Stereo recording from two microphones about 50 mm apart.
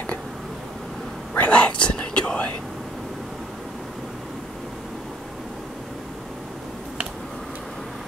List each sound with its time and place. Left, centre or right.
1.3 s whispering: left